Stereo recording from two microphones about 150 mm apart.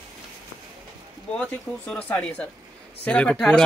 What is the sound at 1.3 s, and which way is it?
Speech, 10° left (ahead or behind).